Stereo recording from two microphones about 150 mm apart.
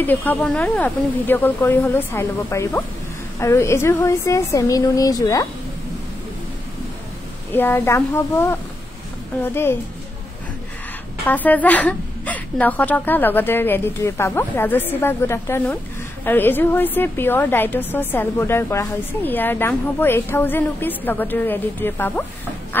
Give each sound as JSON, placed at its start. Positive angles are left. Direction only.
{"t": 0.0, "sound": "a woman's voice", "side_deg": 10}
{"t": 7.5, "sound": "a woman's voice", "side_deg": 15}
{"t": 11.2, "sound": "a woman's voice", "side_deg": 10}